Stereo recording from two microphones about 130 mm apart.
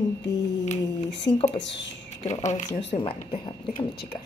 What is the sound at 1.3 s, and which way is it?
Speech, 25° left (ahead or behind).